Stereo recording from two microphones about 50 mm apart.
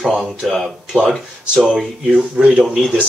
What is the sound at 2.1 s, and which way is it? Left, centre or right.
Speech, centre.